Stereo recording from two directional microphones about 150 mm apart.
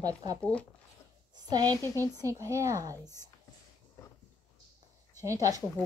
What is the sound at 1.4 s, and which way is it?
Speech, 25° right (ahead or behind).